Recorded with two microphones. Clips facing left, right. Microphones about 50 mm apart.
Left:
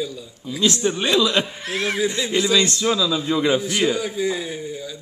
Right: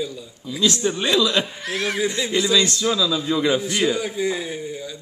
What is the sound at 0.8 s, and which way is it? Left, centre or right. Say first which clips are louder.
A man's voice: left 1 dB; centre.